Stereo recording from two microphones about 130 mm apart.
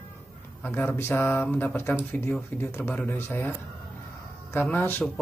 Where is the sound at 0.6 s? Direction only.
15° left (ahead or behind).